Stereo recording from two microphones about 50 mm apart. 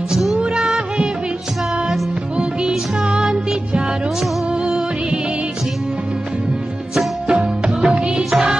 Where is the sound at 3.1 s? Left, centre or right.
Centre.